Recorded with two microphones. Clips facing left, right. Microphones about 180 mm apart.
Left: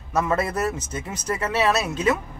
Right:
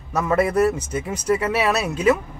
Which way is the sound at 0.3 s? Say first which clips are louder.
Right 11 dB; 10° right (ahead or behind).